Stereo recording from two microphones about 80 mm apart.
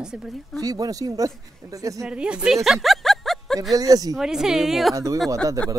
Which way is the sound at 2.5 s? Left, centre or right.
Centre.